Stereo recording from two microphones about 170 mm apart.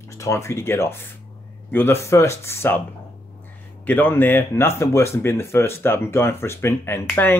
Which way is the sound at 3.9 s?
10° left (ahead or behind).